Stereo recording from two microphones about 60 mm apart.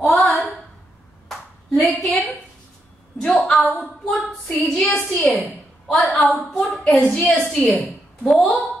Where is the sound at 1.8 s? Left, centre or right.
Centre.